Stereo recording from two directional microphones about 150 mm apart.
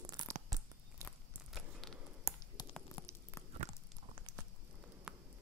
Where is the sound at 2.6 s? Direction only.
25° left (ahead or behind).